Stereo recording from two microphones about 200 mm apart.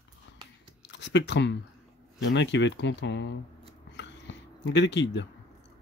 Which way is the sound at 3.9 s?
65° left (ahead or behind).